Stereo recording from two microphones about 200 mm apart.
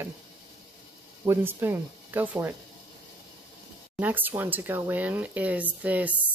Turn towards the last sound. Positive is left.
turn(degrees=-10)  # may be behind; listen again after turning